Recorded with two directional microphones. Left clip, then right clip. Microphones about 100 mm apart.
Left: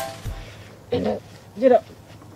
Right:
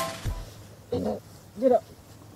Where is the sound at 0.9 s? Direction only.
30° left (ahead or behind).